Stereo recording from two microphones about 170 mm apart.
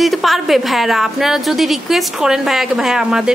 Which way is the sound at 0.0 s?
Centre (ahead or behind).